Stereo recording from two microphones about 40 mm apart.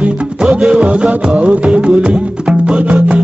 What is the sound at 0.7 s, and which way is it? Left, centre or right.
Music, right.